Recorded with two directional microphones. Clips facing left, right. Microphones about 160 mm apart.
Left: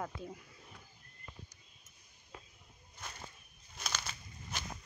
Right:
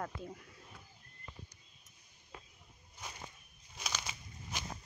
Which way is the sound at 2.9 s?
10° right (ahead or behind).